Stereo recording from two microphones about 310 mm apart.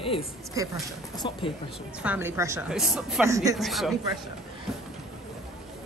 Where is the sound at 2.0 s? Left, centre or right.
Centre.